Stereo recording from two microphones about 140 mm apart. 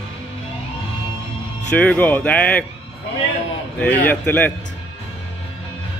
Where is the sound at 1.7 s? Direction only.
10° left (ahead or behind).